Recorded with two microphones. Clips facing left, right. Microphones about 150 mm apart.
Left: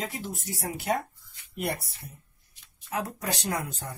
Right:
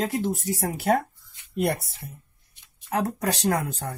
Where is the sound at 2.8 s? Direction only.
60° right (ahead or behind).